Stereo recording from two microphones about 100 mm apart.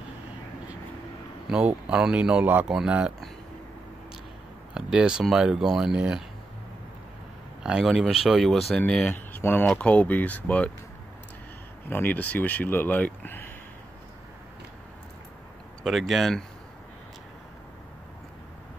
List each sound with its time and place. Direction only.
1.5 s speech: 10° right (ahead or behind)
4.7 s speech: 10° right (ahead or behind)
7.6 s speech: 5° right (ahead or behind)
9.1 s speech: 20° left (ahead or behind)
11.9 s speech: 20° left (ahead or behind)
15.8 s speech: centre (ahead or behind)